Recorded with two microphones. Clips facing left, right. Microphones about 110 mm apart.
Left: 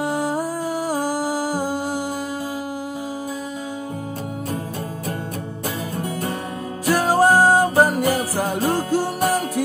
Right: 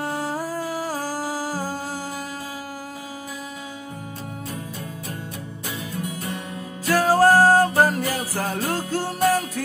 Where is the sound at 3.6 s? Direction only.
45° left (ahead or behind).